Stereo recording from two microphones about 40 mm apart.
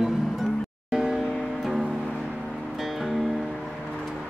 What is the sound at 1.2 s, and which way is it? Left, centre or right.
Music, centre.